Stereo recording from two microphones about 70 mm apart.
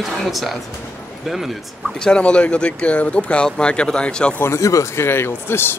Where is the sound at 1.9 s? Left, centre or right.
Centre.